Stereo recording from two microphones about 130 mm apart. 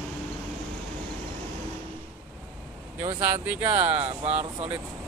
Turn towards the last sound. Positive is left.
turn(degrees=-50)  # may be behind; listen again after turning